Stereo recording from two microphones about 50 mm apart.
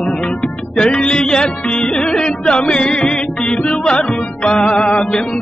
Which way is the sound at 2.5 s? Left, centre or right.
Centre.